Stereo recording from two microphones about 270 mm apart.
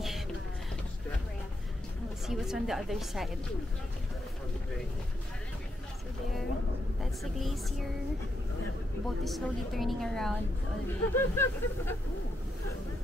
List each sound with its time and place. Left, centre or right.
2.2 s a woman's voice: centre
7.0 s a woman's voice: centre
9.2 s a woman's voice: centre